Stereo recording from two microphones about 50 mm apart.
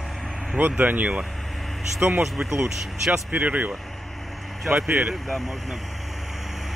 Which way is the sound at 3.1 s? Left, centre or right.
Right.